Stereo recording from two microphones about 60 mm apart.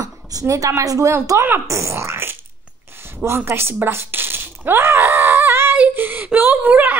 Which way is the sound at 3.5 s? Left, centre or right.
Right.